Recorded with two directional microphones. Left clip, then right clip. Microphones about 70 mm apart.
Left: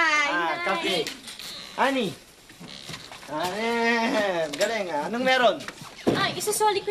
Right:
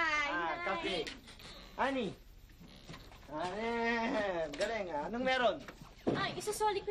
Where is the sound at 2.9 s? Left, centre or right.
Left.